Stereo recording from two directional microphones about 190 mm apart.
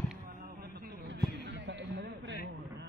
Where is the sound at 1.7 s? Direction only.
65° right (ahead or behind).